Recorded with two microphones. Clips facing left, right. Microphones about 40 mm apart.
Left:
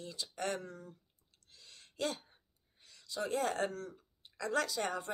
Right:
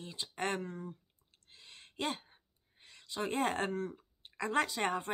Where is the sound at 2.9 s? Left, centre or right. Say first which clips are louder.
Even; right.